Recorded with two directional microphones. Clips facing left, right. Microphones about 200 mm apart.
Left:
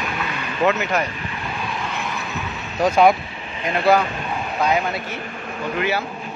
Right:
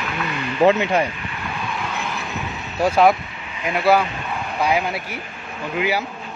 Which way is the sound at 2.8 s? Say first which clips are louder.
Even; 5° right (ahead or behind).